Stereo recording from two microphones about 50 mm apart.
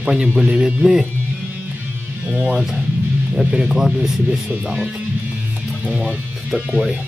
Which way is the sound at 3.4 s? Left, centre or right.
Centre.